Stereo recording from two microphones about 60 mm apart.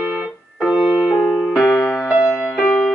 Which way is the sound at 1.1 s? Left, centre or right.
Centre.